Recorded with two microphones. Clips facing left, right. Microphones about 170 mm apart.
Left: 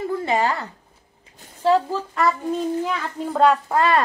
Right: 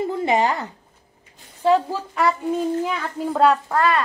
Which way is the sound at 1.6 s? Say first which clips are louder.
Even; 10° right (ahead or behind).